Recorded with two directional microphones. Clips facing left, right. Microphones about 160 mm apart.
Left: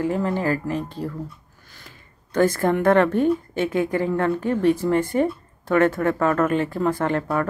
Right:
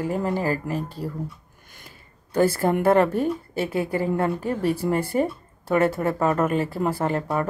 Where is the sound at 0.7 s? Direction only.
10° right (ahead or behind).